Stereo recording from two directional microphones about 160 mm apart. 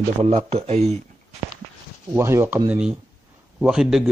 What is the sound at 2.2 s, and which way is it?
Speech, 15° right (ahead or behind).